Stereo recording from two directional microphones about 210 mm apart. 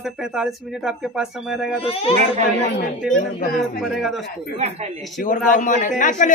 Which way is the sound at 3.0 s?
Centre (ahead or behind).